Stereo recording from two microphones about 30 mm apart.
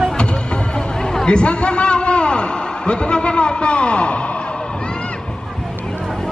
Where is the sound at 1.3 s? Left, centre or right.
Left.